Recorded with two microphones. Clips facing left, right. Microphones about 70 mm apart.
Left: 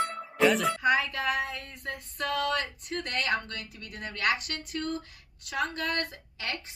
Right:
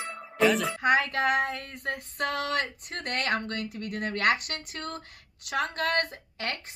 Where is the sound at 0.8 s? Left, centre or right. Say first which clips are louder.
Right 2 dB; right.